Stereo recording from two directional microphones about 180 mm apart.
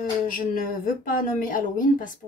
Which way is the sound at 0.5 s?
50° left (ahead or behind).